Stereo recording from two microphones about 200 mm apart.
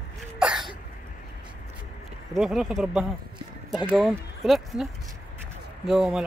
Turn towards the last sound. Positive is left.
turn(degrees=0)  # may be behind; listen again after turning